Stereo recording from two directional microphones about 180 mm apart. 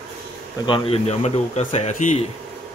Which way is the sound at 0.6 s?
30° left (ahead or behind).